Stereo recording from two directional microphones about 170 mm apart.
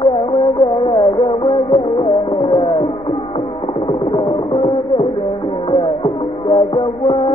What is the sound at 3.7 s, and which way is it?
Music, 30° left (ahead or behind).